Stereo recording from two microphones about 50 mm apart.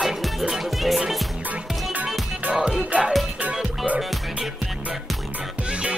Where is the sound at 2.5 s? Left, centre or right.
Centre.